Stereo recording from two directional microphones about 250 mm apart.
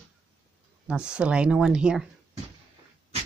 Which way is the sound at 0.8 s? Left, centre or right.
Centre.